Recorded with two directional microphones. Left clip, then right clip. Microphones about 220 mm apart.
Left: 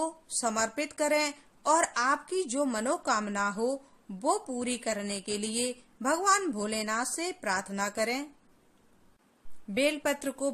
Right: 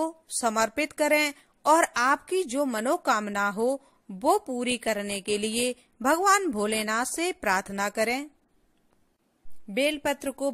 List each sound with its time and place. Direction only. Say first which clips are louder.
0.0 s a woman's voice: right 4 dB; 35° right (ahead or behind)
9.8 s a woman's voice: right 2 dB; 30° right (ahead or behind)